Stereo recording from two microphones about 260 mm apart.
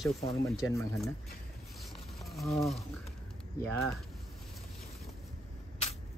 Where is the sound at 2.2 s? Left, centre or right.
Centre.